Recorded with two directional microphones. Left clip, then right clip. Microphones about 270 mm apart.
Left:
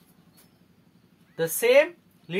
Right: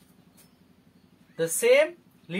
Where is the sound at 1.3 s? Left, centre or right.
Left.